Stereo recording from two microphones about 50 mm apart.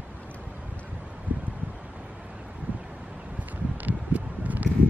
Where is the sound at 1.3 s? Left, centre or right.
Right.